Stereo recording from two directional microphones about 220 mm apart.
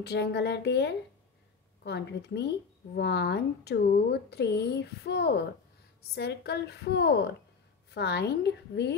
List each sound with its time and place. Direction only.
0.0 s a woman's voice: 50° left (ahead or behind)